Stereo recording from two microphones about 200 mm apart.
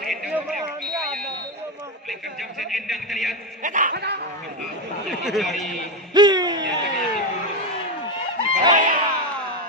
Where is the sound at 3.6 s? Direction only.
40° right (ahead or behind).